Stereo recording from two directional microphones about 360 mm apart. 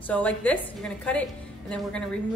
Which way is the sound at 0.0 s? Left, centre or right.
Centre.